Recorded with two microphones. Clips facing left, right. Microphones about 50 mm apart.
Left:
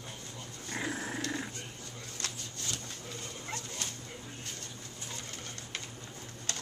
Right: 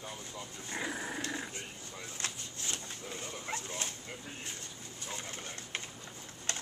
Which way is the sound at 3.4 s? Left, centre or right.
Right.